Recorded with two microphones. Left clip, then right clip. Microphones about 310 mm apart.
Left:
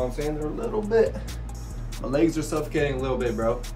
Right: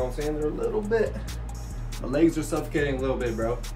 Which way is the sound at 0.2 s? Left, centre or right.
Centre.